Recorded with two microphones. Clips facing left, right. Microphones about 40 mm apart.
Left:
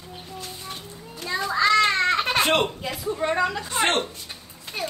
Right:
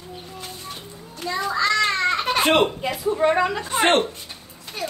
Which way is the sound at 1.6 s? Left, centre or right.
Centre.